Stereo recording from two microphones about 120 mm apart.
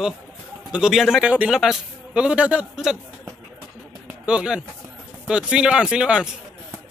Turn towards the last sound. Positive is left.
turn(degrees=-5)  # may be behind; listen again after turning